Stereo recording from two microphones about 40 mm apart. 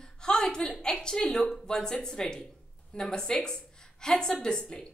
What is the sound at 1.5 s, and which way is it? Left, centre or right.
A woman's voice, centre.